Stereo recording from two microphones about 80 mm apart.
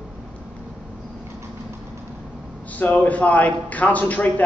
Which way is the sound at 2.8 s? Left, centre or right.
Centre.